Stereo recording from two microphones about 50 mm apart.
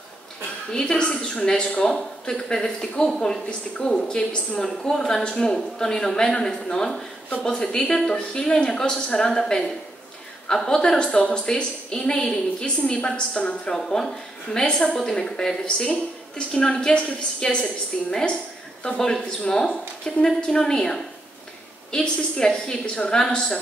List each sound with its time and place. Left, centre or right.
0.7 s a woman's voice: centre